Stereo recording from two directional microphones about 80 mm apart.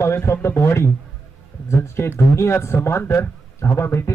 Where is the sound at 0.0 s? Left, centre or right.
Left.